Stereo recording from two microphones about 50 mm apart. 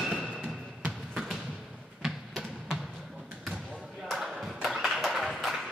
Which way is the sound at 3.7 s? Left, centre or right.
Centre.